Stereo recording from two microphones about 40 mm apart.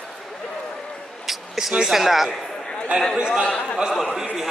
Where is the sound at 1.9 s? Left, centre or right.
Centre.